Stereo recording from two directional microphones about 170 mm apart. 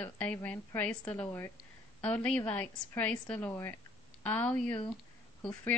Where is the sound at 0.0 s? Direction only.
10° left (ahead or behind).